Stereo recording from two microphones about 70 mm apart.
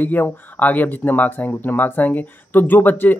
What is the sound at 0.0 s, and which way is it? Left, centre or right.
Speech, left.